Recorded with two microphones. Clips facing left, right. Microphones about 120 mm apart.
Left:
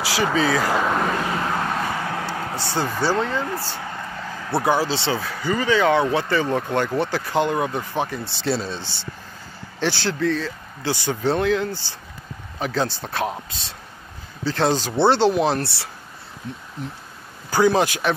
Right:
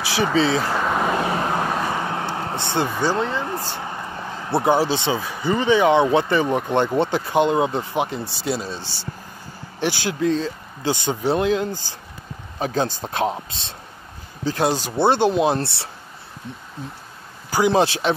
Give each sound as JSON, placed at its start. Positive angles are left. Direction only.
{"t": 0.1, "sound": "speech", "side_deg": -25}
{"t": 0.7, "sound": "vehicle", "side_deg": -5}
{"t": 1.1, "sound": "vehicle", "side_deg": -20}
{"t": 2.0, "sound": "speech", "side_deg": -25}
{"t": 14.4, "sound": "speech", "side_deg": -15}
{"t": 15.0, "sound": "speech", "side_deg": -20}